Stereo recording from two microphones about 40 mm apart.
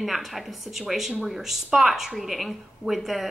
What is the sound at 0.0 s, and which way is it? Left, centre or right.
A woman's voice, centre.